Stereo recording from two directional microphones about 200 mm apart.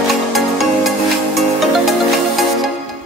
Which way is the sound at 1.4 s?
Centre (ahead or behind).